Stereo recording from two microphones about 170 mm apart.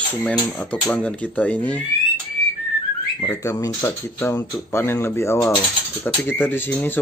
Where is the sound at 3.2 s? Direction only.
20° left (ahead or behind).